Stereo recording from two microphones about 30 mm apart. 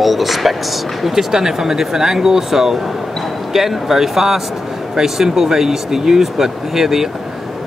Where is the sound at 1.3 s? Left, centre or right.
Centre.